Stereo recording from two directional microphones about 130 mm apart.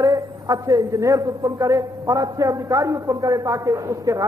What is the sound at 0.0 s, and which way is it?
A man's voice, 25° right (ahead or behind).